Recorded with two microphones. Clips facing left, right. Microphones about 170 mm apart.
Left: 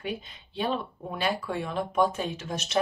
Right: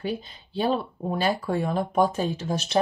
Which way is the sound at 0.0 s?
35° right (ahead or behind).